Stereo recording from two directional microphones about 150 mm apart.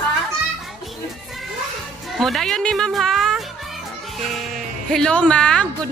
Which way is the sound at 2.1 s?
Centre (ahead or behind).